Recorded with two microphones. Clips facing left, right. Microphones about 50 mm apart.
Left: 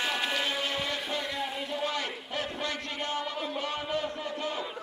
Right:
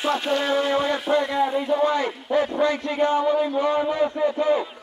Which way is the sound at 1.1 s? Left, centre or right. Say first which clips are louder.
Right 12 dB; right.